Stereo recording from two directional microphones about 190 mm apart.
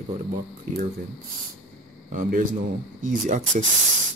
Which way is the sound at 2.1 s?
45° right (ahead or behind).